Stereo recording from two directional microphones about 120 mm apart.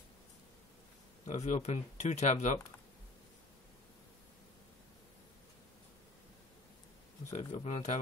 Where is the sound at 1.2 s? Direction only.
70° left (ahead or behind).